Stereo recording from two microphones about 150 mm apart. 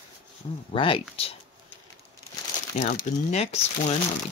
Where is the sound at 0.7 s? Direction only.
35° left (ahead or behind).